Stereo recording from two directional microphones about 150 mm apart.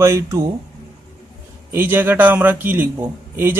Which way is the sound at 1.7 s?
15° right (ahead or behind).